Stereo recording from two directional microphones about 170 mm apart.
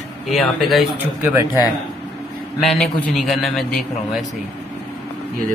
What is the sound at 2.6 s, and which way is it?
A man's voice, centre (ahead or behind).